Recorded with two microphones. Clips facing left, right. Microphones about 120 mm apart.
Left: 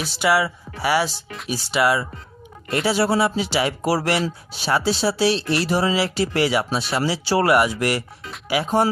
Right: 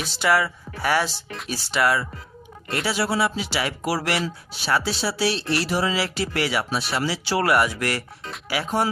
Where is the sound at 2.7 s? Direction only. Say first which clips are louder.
Left 5 dB; 30° left (ahead or behind).